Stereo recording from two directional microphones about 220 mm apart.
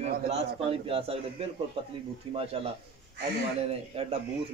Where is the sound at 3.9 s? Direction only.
25° right (ahead or behind).